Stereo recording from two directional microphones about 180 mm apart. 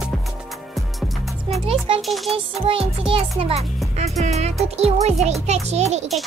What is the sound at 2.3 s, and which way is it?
Music, 30° right (ahead or behind).